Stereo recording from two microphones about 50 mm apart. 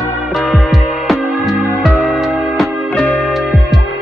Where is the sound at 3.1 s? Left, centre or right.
Left.